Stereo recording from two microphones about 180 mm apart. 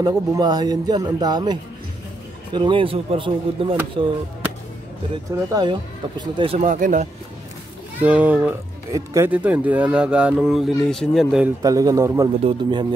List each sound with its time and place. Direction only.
0.0 s speech: 20° right (ahead or behind)
6.6 s speech: 45° right (ahead or behind)
8.0 s speech: 10° right (ahead or behind)
11.4 s speech: 20° right (ahead or behind)